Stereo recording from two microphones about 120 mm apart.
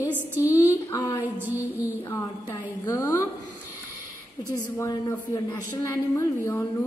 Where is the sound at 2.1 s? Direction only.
20° left (ahead or behind).